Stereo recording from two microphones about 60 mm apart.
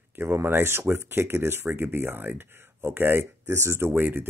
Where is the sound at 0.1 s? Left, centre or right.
Right.